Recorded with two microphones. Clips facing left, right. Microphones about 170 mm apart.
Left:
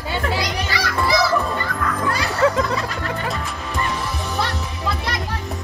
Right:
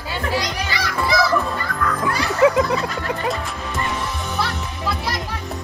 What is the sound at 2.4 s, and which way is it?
Snicker, 15° right (ahead or behind).